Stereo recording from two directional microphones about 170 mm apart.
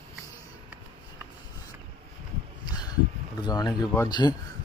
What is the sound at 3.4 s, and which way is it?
Speech, 25° left (ahead or behind).